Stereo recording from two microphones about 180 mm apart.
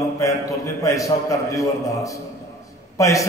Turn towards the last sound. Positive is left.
turn(degrees=15)  # may be behind; listen again after turning